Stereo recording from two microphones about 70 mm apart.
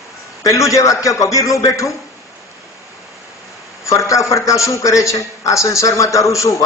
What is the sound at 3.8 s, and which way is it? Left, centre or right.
A man's voice, left.